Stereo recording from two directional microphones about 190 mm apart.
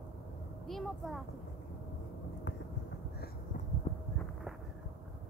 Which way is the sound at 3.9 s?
30° left (ahead or behind).